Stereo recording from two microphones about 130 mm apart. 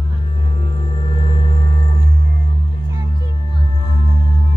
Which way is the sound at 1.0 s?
80° right.